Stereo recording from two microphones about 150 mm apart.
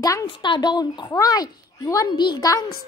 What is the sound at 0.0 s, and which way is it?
A woman's voice, 25° left (ahead or behind).